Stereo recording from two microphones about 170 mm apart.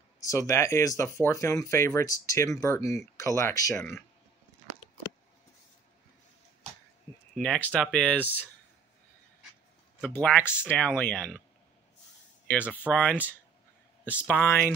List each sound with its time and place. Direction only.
0.2 s speech: 20° left (ahead or behind)
7.3 s speech: 5° left (ahead or behind)
10.0 s speech: 10° left (ahead or behind)
12.9 s speech: 10° left (ahead or behind)